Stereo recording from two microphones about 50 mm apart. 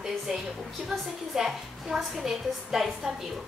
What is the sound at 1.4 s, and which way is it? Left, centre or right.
A woman's voice, centre.